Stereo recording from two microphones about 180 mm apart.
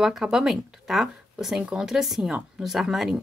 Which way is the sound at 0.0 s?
5° right (ahead or behind).